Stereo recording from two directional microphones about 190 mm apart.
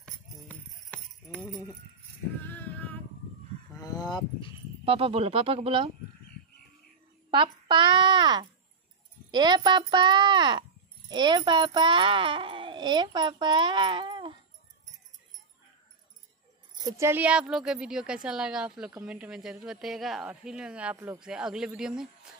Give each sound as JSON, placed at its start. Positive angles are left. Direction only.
{"t": 0.0, "sound": "jingle bell", "side_deg": 5}
{"t": 2.4, "sound": "female singing", "side_deg": 10}
{"t": 3.8, "sound": "a sound", "side_deg": 20}
{"t": 4.8, "sound": "speech", "side_deg": -30}
{"t": 7.2, "sound": "a child's voice", "side_deg": -25}
{"t": 16.8, "sound": "a woman's voice", "side_deg": -15}